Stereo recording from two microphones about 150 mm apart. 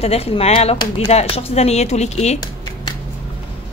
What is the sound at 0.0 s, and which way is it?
Speech, 40° left (ahead or behind).